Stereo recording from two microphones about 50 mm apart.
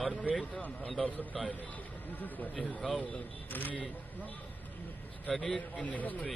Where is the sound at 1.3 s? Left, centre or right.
Centre.